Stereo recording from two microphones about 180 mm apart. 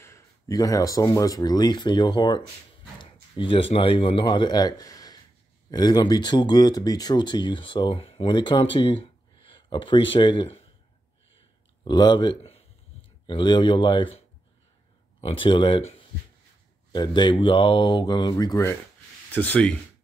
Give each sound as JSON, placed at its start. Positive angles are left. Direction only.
{"t": 0.0, "sound": "speech", "side_deg": 15}
{"t": 8.7, "sound": "a sound", "side_deg": 30}
{"t": 10.1, "sound": "speech", "side_deg": 25}
{"t": 11.8, "sound": "speech", "side_deg": 25}
{"t": 16.9, "sound": "speech", "side_deg": 25}